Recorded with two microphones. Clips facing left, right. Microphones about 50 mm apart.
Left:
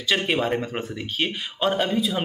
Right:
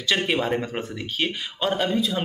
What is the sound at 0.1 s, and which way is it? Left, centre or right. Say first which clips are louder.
Speech: even; centre.